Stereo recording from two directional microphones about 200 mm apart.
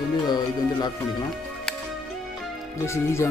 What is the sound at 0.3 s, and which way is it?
Music, 20° left (ahead or behind).